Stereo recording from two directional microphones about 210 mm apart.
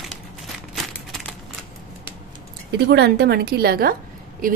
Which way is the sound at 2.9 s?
50° right (ahead or behind).